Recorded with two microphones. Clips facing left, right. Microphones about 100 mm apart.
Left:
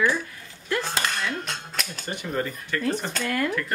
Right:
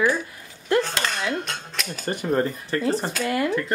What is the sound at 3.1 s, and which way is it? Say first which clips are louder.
Speech: right 3 dB; 5° right (ahead or behind).